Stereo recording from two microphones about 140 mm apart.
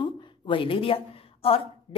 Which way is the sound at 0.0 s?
40° left (ahead or behind).